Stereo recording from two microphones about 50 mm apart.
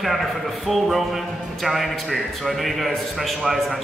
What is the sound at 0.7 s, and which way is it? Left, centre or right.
A man's voice, centre.